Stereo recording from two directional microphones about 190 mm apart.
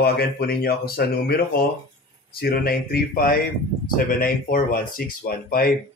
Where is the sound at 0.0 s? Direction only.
60° left (ahead or behind).